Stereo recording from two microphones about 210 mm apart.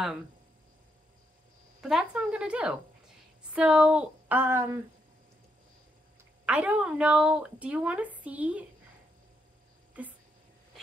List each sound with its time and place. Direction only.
1.8 s a sound: 5° right (ahead or behind)
3.5 s a woman's voice: 5° right (ahead or behind)
6.4 s a woman's voice: 5° right (ahead or behind)